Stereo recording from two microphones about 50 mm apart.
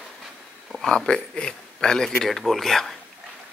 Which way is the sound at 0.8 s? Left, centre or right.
Centre.